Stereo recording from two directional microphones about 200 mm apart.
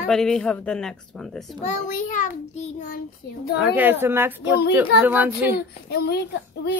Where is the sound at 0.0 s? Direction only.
Centre (ahead or behind).